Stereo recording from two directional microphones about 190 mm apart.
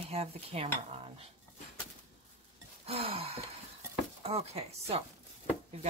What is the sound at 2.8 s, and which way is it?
Speech, 30° right (ahead or behind).